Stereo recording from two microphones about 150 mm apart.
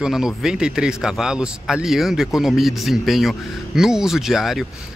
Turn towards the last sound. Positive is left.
turn(degrees=0)  # may be behind; listen again after turning